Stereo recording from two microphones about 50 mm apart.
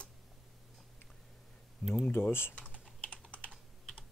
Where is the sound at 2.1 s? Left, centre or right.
Left.